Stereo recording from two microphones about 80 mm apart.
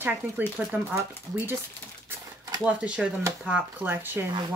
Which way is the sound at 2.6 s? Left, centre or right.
Centre.